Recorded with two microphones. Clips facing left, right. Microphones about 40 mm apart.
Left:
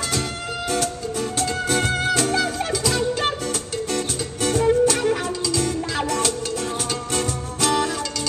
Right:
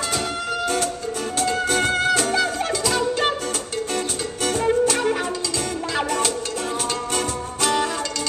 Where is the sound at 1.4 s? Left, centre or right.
Centre.